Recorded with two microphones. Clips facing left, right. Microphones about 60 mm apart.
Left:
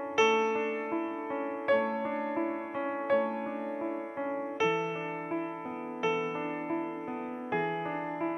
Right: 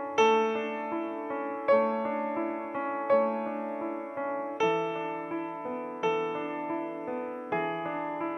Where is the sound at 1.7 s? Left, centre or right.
Right.